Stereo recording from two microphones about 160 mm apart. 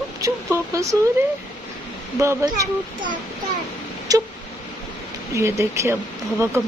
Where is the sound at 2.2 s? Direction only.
20° right (ahead or behind).